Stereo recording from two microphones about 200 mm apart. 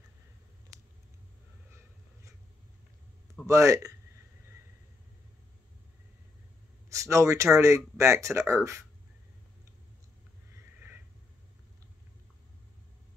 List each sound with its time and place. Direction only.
3.4 s speech: 15° right (ahead or behind)
6.9 s speech: 15° right (ahead or behind)
10.5 s sniff: 10° right (ahead or behind)